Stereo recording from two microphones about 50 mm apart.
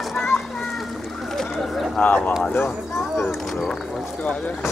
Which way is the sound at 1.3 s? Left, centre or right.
Centre.